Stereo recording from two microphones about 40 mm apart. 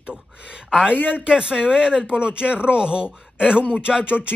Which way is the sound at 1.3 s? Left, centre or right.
Centre.